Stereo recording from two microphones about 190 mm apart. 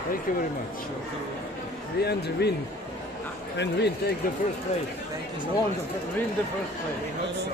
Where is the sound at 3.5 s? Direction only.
65° left (ahead or behind).